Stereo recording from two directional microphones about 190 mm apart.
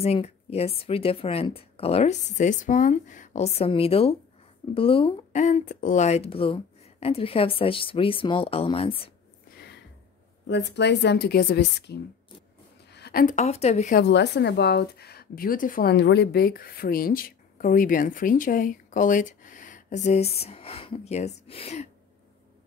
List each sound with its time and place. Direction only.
0.0 s speech: 30° left (ahead or behind)
10.4 s a woman's voice: 65° left (ahead or behind); by 13.9 s 35° left (ahead or behind)
13.9 s a woman's voice: 65° left (ahead or behind); by 21.8 s 30° left (ahead or behind)